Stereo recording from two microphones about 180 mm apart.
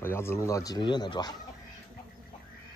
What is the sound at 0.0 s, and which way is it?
Speech, 15° left (ahead or behind).